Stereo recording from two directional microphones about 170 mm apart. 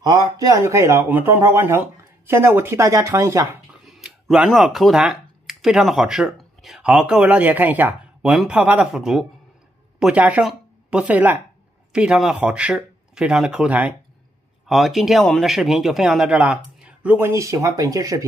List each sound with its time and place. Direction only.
0.0 s speech: 20° right (ahead or behind)
3.8 s a man's voice: centre (ahead or behind); by 18.2 s 20° right (ahead or behind)